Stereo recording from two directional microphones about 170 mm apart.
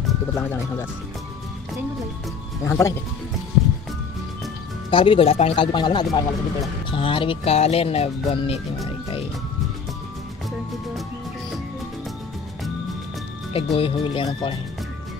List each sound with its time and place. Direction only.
0.3 s speech: 10° left (ahead or behind)
2.6 s speech: 15° left (ahead or behind)
4.9 s speech: 30° left (ahead or behind)
13.5 s speech: 35° left (ahead or behind)